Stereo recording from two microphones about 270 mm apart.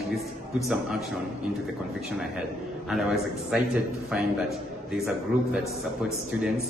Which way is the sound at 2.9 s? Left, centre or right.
Centre.